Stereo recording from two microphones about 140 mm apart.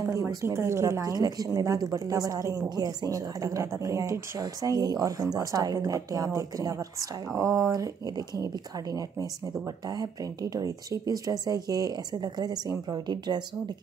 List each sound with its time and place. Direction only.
0.1 s a woman's voice: 20° right (ahead or behind)
9.9 s a woman's voice: 25° right (ahead or behind)